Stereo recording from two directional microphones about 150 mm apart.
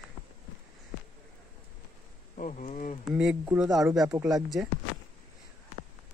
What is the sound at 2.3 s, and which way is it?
Speech, 55° left (ahead or behind).